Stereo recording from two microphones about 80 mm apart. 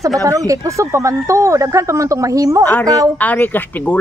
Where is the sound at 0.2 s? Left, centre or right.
Right.